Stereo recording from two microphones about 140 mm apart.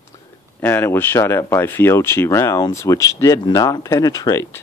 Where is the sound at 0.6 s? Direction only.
15° left (ahead or behind).